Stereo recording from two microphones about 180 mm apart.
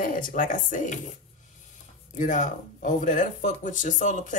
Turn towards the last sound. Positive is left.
turn(degrees=45)  # may be behind; listen again after turning